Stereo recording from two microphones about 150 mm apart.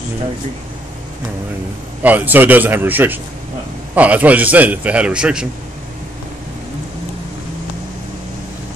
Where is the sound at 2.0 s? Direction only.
10° right (ahead or behind).